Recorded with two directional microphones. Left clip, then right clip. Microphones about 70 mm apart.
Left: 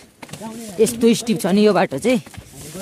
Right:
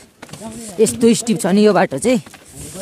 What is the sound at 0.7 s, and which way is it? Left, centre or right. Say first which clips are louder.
Speech: right 2 dB; right.